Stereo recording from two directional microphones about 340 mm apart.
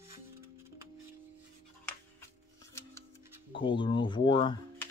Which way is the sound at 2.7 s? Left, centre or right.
Centre.